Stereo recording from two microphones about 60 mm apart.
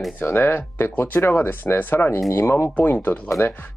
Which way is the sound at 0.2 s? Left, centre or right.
Left.